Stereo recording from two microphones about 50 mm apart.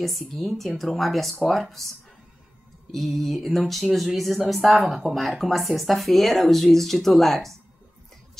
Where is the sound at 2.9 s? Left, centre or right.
Centre.